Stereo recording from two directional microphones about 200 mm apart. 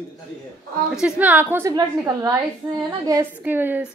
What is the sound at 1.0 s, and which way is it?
A woman's voice, 10° right (ahead or behind).